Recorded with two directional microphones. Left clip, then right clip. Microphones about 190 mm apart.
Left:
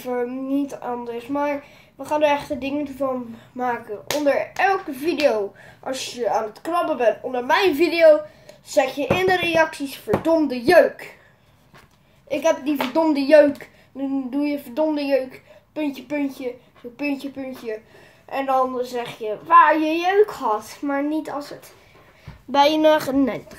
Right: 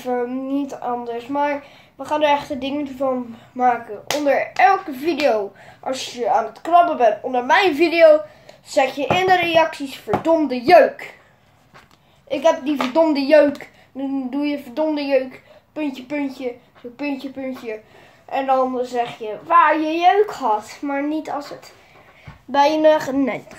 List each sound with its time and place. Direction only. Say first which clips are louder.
0.0 s speech: right 3 dB; 5° right (ahead or behind)
12.3 s a woman's voice: right 3 dB; 10° right (ahead or behind)
22.5 s a woman's voice: right 1 dB; 15° left (ahead or behind)